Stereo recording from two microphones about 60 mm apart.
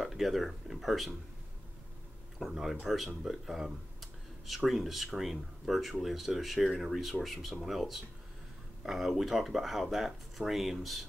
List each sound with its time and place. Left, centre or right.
0.0 s speech: centre
2.3 s speech: centre
3.3 s computer keyboard: centre
4.6 s speech: centre